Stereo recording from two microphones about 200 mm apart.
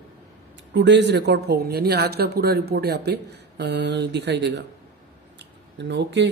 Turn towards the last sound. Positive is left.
turn(degrees=-60)  # may be behind; listen again after turning